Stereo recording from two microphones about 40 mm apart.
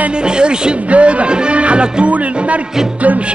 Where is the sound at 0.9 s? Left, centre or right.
Right.